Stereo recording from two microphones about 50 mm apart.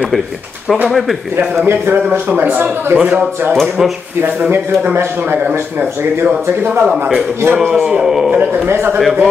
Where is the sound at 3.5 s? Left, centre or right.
Centre.